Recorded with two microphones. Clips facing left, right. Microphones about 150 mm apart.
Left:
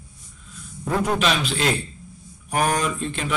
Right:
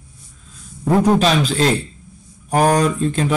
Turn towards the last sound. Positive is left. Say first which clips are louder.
# right 8 dB
turn(degrees=-40)  # may be behind; listen again after turning